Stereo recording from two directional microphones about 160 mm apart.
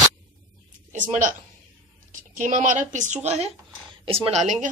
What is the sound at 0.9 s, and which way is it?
A woman's voice, 55° right (ahead or behind).